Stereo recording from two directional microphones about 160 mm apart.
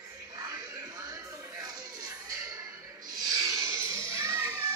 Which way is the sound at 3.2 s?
20° right (ahead or behind).